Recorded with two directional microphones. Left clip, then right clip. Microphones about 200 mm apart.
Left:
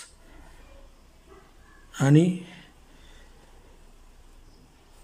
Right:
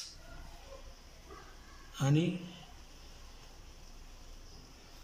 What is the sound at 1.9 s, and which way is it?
Speech, 50° left (ahead or behind).